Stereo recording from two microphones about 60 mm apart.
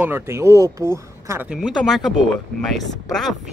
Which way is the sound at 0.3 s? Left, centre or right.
Right.